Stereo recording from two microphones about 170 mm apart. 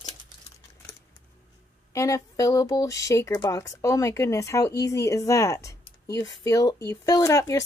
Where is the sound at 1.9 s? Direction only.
20° left (ahead or behind).